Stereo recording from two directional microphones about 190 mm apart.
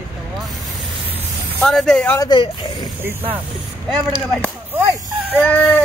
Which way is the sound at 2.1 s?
20° left (ahead or behind).